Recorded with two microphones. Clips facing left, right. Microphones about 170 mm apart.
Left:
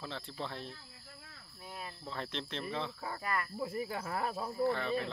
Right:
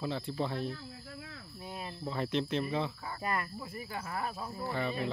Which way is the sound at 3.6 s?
55° left (ahead or behind).